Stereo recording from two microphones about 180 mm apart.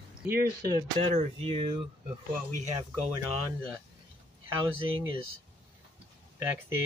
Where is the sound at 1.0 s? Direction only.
30° right (ahead or behind).